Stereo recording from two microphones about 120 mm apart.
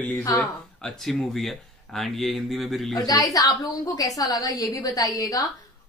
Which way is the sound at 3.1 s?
30° left (ahead or behind).